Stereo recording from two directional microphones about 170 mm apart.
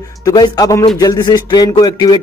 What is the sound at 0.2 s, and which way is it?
Speech, 20° left (ahead or behind).